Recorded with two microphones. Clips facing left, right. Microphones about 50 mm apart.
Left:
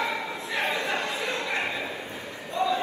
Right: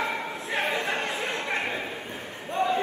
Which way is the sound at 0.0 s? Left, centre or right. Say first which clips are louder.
Even; right.